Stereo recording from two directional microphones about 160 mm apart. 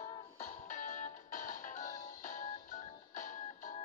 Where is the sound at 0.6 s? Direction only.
55° left (ahead or behind).